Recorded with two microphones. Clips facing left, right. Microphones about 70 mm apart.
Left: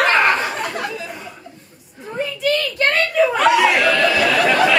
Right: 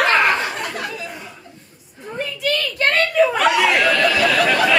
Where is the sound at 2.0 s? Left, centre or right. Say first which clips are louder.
Left 3 dB; centre.